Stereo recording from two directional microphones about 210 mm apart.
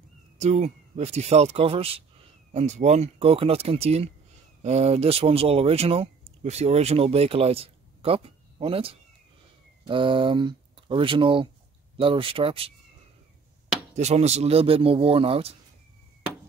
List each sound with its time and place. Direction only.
0.4 s speech: 30° right (ahead or behind)
13.9 s speech: 30° right (ahead or behind)